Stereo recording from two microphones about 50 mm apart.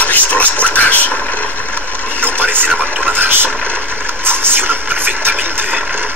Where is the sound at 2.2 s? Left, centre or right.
Right.